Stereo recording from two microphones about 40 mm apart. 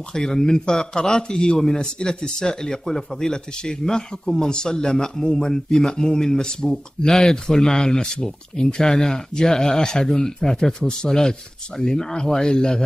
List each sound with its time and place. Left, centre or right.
0.1 s speech: centre
7.0 s speech: centre